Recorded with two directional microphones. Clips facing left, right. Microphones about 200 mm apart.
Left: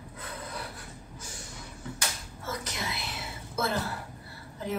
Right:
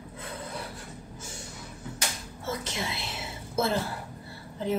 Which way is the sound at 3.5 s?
25° right (ahead or behind).